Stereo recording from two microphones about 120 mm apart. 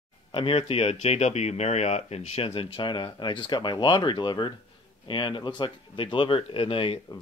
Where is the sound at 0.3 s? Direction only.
50° left (ahead or behind).